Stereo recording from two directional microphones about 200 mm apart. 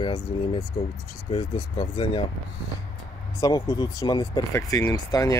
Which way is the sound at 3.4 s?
15° left (ahead or behind).